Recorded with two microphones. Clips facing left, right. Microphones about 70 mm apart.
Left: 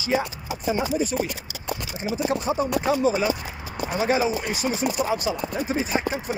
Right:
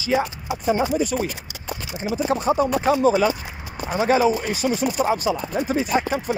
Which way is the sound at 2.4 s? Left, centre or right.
Right.